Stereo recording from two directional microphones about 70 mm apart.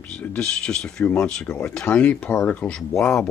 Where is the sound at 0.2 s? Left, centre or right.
Centre.